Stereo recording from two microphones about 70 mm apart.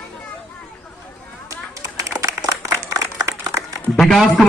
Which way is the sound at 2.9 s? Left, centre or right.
Right.